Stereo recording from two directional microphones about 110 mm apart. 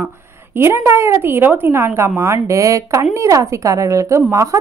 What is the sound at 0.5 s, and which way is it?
A woman's voice, 20° right (ahead or behind).